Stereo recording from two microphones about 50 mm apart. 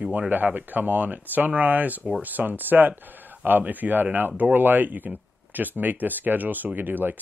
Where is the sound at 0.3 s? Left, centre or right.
Right.